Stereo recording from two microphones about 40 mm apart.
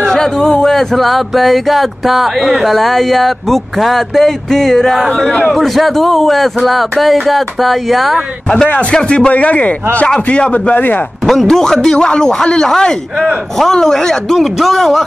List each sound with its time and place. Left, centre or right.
0.0 s a man's voice: centre
0.7 s a sound: centre
8.9 s a man's voice: left
9.3 s speech: left
10.0 s a man's voice: left
10.5 s speech: left
11.4 s a man's voice: centre